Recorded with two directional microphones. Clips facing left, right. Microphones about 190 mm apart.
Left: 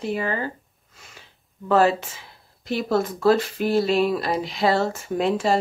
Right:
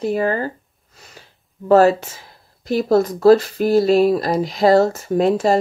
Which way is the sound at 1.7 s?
40° right (ahead or behind).